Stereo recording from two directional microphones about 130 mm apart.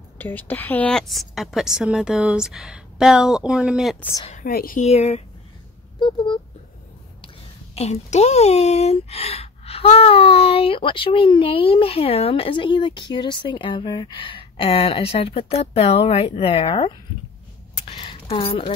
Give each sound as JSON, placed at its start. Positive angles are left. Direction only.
{"t": 0.2, "sound": "a woman's voice", "side_deg": 15}
{"t": 4.3, "sound": "a woman's voice", "side_deg": 80}
{"t": 4.9, "sound": "speech", "side_deg": 55}
{"t": 5.9, "sound": "a sound", "side_deg": 35}
{"t": 7.7, "sound": "speech", "side_deg": 55}
{"t": 17.8, "sound": "a sound", "side_deg": 45}